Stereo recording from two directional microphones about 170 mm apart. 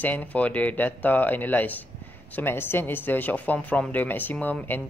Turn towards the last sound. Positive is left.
turn(degrees=10)  # may be behind; listen again after turning